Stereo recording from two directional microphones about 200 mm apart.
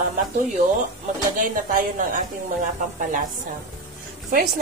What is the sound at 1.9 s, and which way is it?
Speech, 40° right (ahead or behind).